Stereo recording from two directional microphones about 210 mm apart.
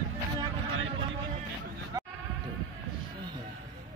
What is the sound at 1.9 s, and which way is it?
Bleat, 15° right (ahead or behind).